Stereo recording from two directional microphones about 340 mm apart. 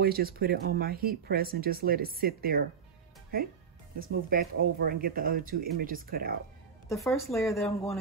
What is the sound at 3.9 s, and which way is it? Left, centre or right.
Speech, right.